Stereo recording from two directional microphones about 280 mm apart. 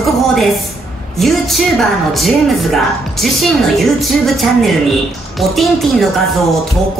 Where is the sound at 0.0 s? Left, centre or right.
Centre.